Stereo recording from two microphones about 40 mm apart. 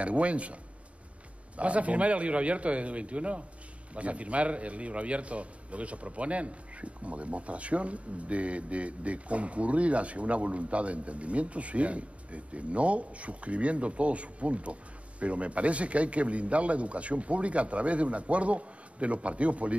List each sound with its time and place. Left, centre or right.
0.0 s a man's voice: right
1.6 s a man's voice: right